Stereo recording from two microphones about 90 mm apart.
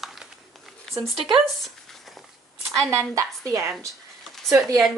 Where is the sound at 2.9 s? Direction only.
35° right (ahead or behind).